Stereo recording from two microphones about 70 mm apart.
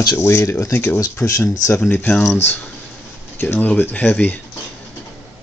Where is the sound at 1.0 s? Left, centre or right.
Left.